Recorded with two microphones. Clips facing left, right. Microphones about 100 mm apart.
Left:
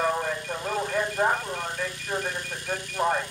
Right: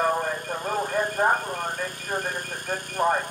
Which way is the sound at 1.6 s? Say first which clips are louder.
Right 1 dB; 45° right (ahead or behind).